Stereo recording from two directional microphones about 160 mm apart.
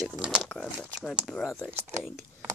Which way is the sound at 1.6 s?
15° right (ahead or behind).